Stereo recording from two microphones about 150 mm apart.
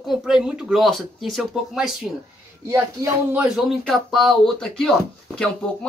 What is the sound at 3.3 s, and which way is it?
Speech, 5° right (ahead or behind).